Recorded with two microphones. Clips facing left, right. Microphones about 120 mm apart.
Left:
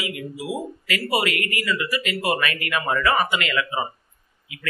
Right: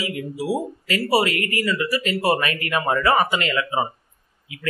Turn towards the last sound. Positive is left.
turn(degrees=-30)  # may be behind; listen again after turning